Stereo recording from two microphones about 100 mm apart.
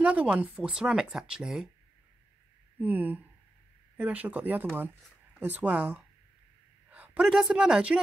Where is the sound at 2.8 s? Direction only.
20° right (ahead or behind).